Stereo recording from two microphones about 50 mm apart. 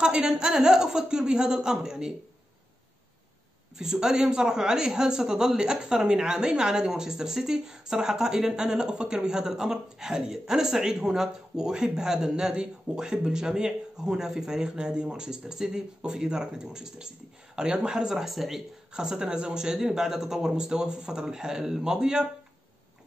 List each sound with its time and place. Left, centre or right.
0.0 s speech: centre
3.7 s speech: centre
18.9 s speech: centre